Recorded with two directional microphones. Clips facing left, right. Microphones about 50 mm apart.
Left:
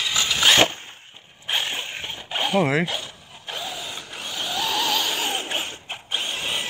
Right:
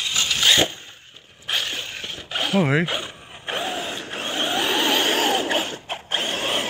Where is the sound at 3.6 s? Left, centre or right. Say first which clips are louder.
Right 5 dB; right.